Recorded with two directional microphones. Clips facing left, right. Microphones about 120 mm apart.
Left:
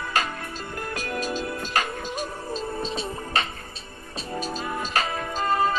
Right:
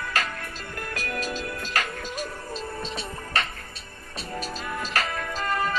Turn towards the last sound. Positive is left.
turn(degrees=25)  # may be behind; listen again after turning